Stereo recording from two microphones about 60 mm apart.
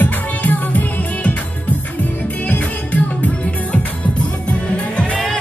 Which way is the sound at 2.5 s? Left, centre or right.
Left.